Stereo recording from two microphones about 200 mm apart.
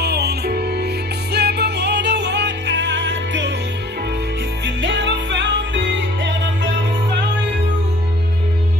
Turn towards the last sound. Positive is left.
turn(degrees=-60)  # may be behind; listen again after turning